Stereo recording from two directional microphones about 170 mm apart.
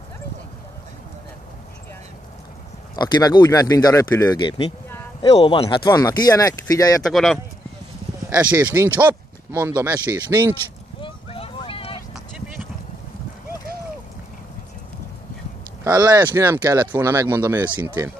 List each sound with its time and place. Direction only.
3.0 s speech: 25° left (ahead or behind)
7.1 s speech: centre (ahead or behind)
8.4 s speech: 10° right (ahead or behind)
11.0 s a sound: 30° left (ahead or behind)
12.1 s clip-clop: 5° right (ahead or behind)
15.8 s speech: 20° right (ahead or behind)